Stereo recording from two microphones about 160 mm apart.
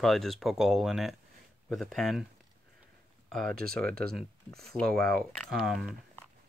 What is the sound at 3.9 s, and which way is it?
Speech, 75° right (ahead or behind).